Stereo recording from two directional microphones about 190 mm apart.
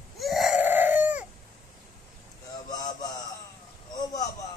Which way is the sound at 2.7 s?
20° left (ahead or behind).